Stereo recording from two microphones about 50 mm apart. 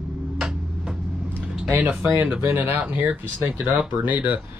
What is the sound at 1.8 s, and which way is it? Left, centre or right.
Speech, right.